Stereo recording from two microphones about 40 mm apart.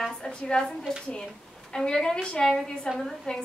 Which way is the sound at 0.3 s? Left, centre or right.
Left.